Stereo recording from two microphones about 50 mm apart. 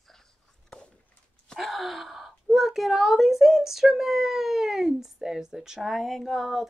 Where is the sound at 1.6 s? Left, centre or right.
Centre.